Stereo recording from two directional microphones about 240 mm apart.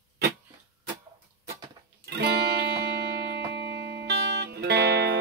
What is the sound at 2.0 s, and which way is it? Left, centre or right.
Music, right.